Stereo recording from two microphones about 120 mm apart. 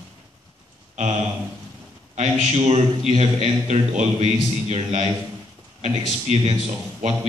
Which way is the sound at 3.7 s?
65° right (ahead or behind).